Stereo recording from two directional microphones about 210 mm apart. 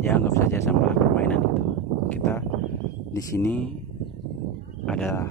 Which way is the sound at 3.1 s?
10° left (ahead or behind).